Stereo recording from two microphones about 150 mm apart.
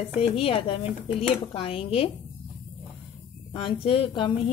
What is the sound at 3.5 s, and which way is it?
Speech, 35° left (ahead or behind).